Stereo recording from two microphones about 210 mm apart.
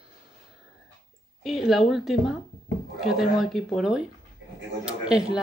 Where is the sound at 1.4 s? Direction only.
Centre (ahead or behind).